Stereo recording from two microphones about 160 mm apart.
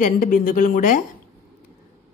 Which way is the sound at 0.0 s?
55° left (ahead or behind).